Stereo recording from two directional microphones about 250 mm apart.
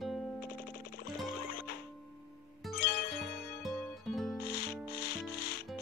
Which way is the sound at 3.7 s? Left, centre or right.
Centre.